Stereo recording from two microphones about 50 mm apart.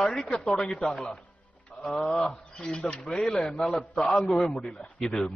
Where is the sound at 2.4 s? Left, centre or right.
Centre.